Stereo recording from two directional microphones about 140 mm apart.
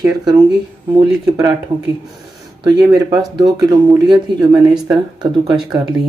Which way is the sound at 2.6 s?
30° right (ahead or behind).